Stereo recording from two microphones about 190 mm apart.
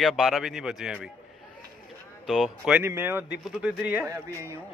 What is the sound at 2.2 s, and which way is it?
Speech, centre (ahead or behind).